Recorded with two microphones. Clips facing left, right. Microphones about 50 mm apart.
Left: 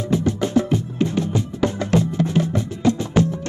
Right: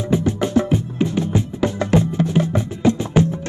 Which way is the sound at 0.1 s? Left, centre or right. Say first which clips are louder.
Right 1 dB; right.